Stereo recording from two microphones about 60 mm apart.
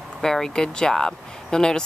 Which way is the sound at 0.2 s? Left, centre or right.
Centre.